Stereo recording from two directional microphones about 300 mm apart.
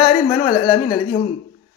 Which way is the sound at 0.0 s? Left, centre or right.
Centre.